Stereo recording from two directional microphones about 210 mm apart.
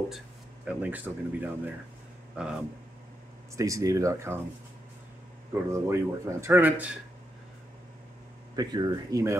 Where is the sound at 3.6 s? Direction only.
15° right (ahead or behind).